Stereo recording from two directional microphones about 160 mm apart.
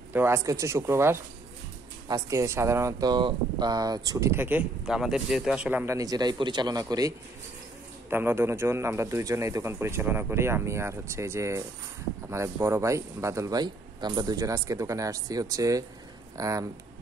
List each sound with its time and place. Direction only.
0.1 s a man's voice: 15° right (ahead or behind)